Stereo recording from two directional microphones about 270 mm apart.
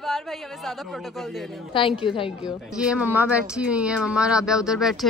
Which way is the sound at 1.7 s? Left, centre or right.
Centre.